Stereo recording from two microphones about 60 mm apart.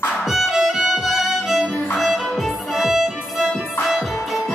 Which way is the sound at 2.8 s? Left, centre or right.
Centre.